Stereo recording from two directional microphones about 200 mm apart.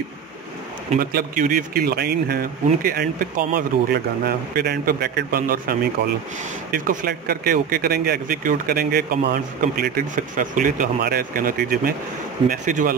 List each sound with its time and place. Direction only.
0.9 s speech: 45° right (ahead or behind)